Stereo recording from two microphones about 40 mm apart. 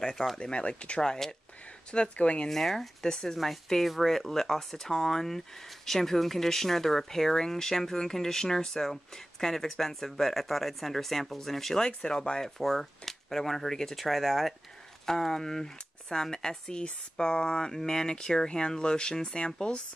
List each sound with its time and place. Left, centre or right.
0.1 s speech: centre
0.4 s speech: left
1.0 s speech: centre
1.9 s speech: left
2.5 s speech: centre
12.4 s speech: centre; by 19.8 s left